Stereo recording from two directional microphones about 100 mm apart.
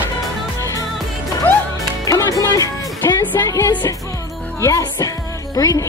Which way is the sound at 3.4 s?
30° left (ahead or behind).